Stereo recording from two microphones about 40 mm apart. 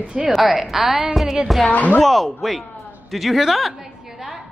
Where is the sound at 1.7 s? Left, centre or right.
Left.